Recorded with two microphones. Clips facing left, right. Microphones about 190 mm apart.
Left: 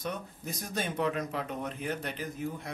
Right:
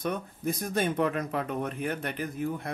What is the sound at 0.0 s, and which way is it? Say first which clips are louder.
Speech: right 6 dB; 55° right (ahead or behind).